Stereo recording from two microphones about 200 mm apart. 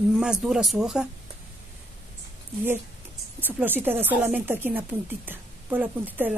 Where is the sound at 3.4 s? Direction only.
10° right (ahead or behind).